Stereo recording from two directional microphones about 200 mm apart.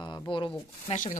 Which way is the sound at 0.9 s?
40° left (ahead or behind).